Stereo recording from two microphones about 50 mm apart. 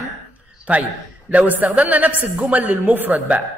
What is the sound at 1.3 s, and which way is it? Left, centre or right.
A woman's voice, right.